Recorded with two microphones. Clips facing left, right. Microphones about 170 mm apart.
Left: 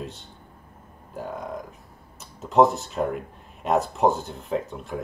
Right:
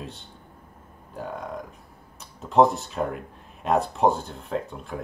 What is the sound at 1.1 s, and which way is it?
Speech, centre (ahead or behind).